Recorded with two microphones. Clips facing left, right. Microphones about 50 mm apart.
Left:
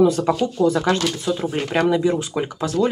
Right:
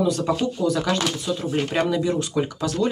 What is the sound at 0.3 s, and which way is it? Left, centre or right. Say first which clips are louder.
Speech: left 3 dB; left.